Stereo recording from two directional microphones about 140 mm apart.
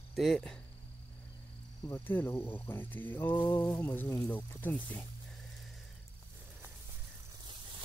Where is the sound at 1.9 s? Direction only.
15° left (ahead or behind).